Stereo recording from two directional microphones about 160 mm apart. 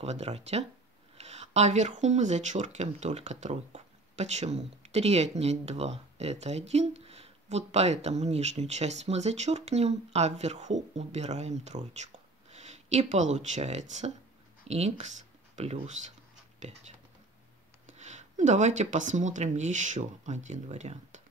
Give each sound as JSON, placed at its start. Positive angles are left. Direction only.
{"t": 0.0, "sound": "speech", "side_deg": -40}
{"t": 17.9, "sound": "speech", "side_deg": -45}